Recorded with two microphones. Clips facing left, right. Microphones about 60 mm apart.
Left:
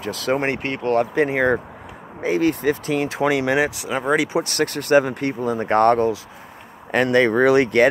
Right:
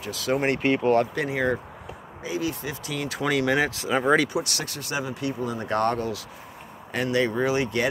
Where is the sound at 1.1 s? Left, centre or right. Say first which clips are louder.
Left 7 dB; left; by 3.6 s centre.